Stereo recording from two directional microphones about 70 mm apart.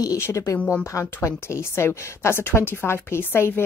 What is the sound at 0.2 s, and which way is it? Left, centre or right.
A woman's voice, left.